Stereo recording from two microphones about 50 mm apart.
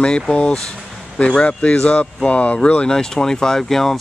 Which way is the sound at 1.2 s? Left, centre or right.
Centre.